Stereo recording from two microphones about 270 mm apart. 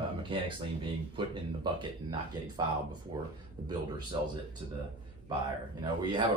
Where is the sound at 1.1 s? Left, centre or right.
Centre.